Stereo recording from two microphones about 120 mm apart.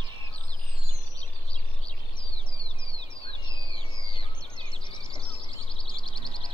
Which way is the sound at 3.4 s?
45° left (ahead or behind).